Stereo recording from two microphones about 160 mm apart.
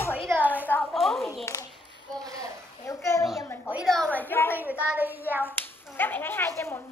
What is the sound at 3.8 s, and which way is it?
Speech, 5° left (ahead or behind).